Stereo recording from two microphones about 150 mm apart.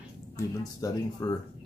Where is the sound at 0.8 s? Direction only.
25° left (ahead or behind).